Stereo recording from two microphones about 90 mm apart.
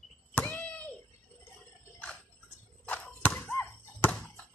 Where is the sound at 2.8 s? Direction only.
10° left (ahead or behind).